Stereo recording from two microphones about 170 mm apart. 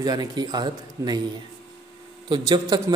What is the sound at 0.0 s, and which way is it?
A man's voice, 20° right (ahead or behind).